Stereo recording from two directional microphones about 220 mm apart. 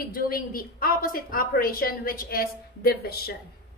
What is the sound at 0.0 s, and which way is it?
A woman's voice, 40° left (ahead or behind).